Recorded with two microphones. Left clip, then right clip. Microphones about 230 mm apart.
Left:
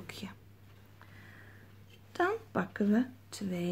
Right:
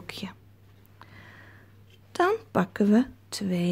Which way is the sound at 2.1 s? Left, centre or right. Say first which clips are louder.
Right 7 dB; right.